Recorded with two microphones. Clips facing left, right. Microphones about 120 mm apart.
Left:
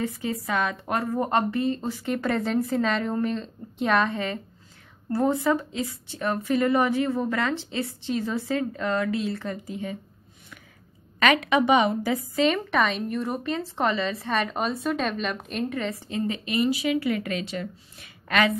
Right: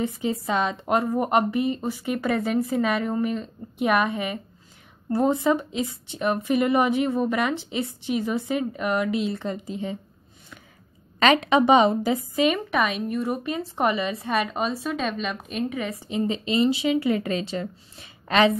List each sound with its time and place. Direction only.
0.0 s a woman's voice: 20° right (ahead or behind)
11.1 s a woman's voice: 30° right (ahead or behind)